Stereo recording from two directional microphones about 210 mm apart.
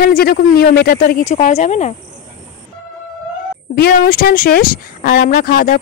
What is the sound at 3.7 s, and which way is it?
A woman's voice, 50° left (ahead or behind).